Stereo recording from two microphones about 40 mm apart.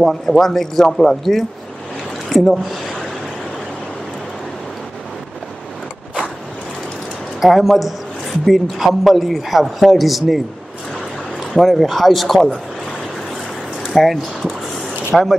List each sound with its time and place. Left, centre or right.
0.0 s speech: centre
7.3 s a man's voice: centre
13.9 s a man's voice: centre